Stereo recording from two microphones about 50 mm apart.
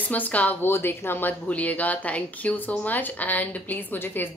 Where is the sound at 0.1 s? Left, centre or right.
Left.